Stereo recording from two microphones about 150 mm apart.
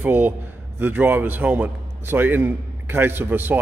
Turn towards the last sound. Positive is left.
turn(degrees=-15)  # may be behind; listen again after turning